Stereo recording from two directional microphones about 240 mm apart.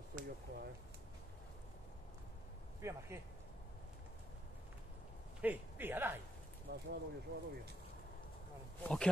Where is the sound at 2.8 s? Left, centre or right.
Centre.